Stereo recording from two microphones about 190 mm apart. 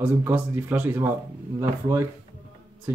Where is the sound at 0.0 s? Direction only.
10° right (ahead or behind).